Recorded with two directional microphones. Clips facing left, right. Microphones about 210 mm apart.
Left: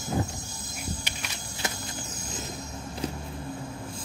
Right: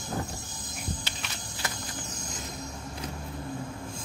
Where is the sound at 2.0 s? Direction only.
5° left (ahead or behind).